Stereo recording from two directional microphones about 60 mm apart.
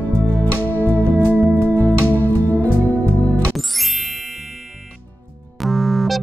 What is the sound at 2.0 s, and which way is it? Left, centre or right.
Music, left.